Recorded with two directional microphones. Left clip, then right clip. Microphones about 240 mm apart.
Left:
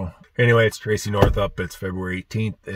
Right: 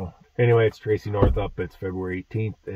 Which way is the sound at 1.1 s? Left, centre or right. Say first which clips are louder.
Left 4 dB; centre.